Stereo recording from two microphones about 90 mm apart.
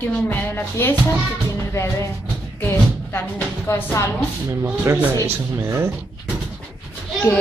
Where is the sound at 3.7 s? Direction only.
25° left (ahead or behind).